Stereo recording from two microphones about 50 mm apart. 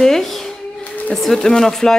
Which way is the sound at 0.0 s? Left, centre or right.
Centre.